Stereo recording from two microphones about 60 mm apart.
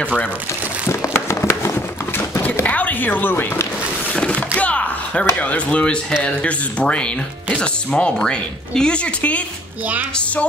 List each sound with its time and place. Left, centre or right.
0.8 s a sound: left
2.6 s speech: left
4.1 s speech: centre